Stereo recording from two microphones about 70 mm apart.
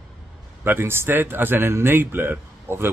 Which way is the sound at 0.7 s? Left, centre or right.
Right.